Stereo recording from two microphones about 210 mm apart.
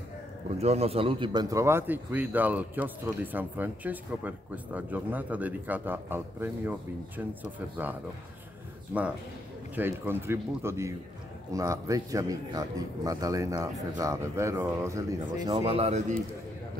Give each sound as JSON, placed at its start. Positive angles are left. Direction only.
{"t": 0.6, "sound": "a man's voice", "side_deg": -30}
{"t": 9.8, "sound": "a man's voice", "side_deg": -10}